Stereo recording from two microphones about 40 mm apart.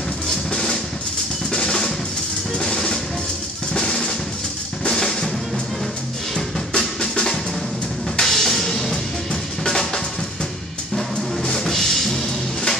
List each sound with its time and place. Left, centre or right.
0.5 s drum: centre
2.6 s drum: centre
7.0 s music: centre
11.0 s music: centre